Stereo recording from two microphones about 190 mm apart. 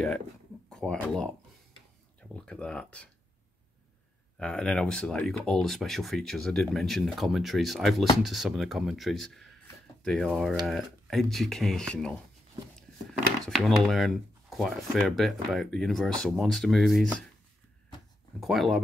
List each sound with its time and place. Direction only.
0.7 s speech: 5° left (ahead or behind)
2.3 s speech: 5° left (ahead or behind)
4.4 s speech: 5° left (ahead or behind)
13.5 s speech: centre (ahead or behind)
18.4 s speech: centre (ahead or behind)